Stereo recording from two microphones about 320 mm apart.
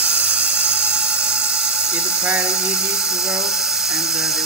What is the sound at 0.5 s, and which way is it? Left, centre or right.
Dental drill, centre.